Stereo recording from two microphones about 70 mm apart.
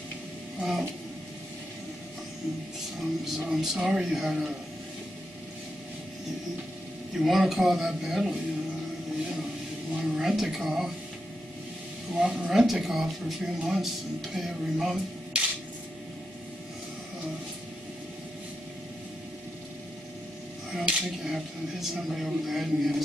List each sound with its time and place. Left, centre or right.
0.6 s a sound: centre
3.0 s speech: centre
7.2 s speech: centre
10.0 s speech: centre
12.1 s a woman's voice: centre
12.4 s speech: centre
15.3 s a sound: centre
20.7 s speech: centre